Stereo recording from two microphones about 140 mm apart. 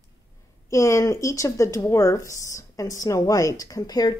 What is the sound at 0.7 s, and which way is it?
Speech, 20° left (ahead or behind).